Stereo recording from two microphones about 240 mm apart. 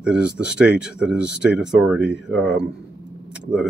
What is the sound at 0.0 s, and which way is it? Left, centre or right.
Speech, centre.